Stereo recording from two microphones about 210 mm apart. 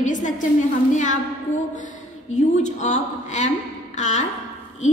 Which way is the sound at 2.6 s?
35° left (ahead or behind).